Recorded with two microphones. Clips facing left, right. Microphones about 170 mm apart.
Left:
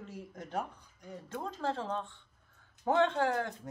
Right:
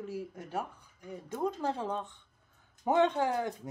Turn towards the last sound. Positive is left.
turn(degrees=-15)  # may be behind; listen again after turning